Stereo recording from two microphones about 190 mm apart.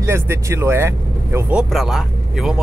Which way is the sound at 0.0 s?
15° right (ahead or behind).